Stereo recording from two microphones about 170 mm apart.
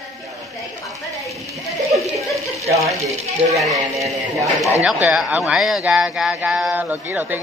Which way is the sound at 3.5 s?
Centre (ahead or behind).